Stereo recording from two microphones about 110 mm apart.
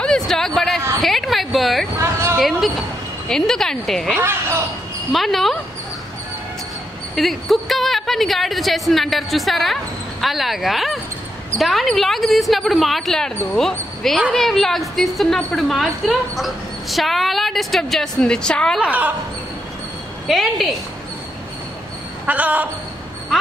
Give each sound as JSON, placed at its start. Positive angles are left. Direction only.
{"t": 0.0, "sound": "a sound", "side_deg": 5}
{"t": 0.6, "sound": "a woman's voice", "side_deg": 0}
{"t": 1.0, "sound": "a sound", "side_deg": 0}
{"t": 2.0, "sound": "a sound", "side_deg": -25}
{"t": 2.3, "sound": "a sound", "side_deg": 0}
{"t": 3.3, "sound": "a woman's voice", "side_deg": 5}
{"t": 4.2, "sound": "speech", "side_deg": -25}
{"t": 5.1, "sound": "a woman's voice", "side_deg": 0}
{"t": 7.2, "sound": "a woman's voice", "side_deg": 0}
{"t": 18.8, "sound": "speech", "side_deg": -15}
{"t": 20.2, "sound": "a woman's voice", "side_deg": 0}
{"t": 22.2, "sound": "speech", "side_deg": -15}